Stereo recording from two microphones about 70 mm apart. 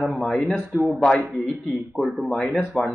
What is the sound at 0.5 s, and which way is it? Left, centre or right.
Speech, right.